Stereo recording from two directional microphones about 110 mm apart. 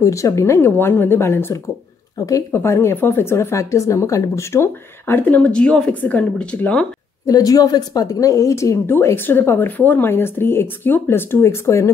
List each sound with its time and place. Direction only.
0.0 s speech: 30° left (ahead or behind); by 6.9 s 10° left (ahead or behind)
7.2 s speech: 35° left (ahead or behind)